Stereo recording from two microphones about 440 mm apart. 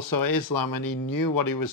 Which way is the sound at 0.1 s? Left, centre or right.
Left.